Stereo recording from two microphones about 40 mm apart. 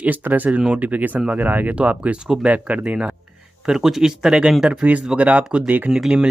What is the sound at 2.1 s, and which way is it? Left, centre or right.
Speech, right.